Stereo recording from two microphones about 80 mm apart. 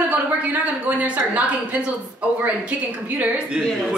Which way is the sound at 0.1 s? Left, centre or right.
Centre.